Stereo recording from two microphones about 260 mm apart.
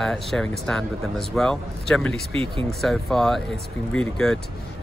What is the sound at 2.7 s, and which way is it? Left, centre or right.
Speech, centre.